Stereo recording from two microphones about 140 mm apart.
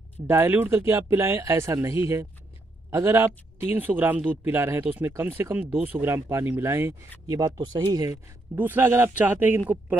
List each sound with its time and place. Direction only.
0.3 s speech: 15° right (ahead or behind)
8.5 s speech: 15° right (ahead or behind)